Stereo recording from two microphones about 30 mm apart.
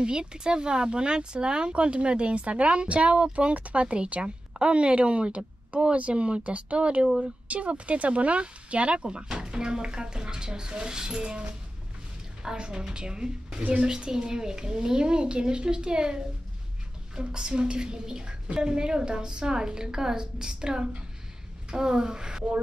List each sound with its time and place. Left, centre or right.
0.0 s speech: right
3.8 s a woman's voice: right
6.4 s speech: right
12.5 s speech: right